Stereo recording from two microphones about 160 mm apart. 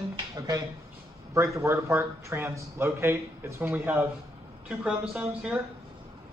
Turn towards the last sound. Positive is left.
turn(degrees=-5)  # may be behind; listen again after turning